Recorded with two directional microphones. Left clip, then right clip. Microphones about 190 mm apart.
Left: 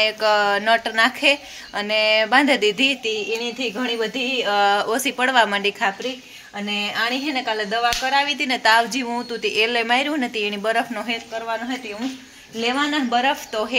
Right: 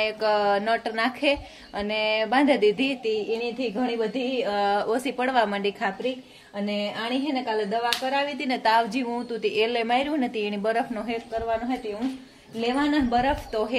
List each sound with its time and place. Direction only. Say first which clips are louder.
0.0 s a woman's voice: left 5 dB; 5° left (ahead or behind)
8.4 s a woman's voice: left 3 dB; 5° left (ahead or behind)
12.5 s a woman's voice: left 3 dB; centre (ahead or behind)